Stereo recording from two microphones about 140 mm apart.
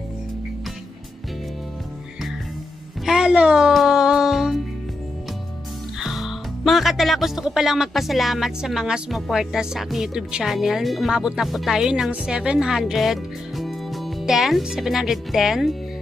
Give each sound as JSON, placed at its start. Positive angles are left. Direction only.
{"t": 3.1, "sound": "music", "side_deg": -5}
{"t": 5.9, "sound": "speech", "side_deg": 0}